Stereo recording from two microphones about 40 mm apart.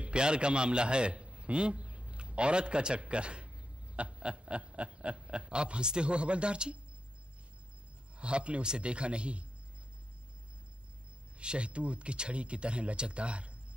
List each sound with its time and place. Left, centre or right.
0.0 s a man's voice: right
8.2 s speech: right
11.3 s speech: right